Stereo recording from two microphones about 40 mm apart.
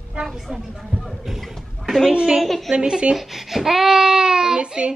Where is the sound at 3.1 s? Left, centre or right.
Centre; by 4.9 s right.